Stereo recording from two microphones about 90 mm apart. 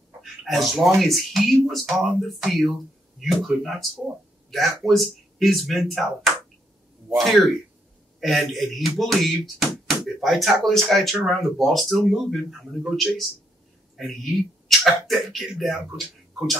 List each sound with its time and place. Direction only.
0.2 s speech: centre (ahead or behind)
8.2 s speech: centre (ahead or behind)